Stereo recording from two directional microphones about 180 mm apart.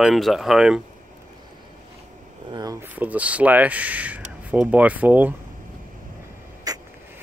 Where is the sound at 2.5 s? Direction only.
20° right (ahead or behind).